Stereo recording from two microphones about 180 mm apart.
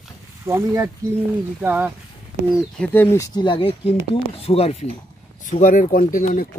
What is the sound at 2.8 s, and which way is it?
Speech, 10° left (ahead or behind).